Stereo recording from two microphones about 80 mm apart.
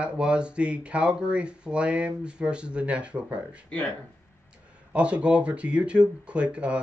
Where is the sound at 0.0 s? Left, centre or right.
Centre.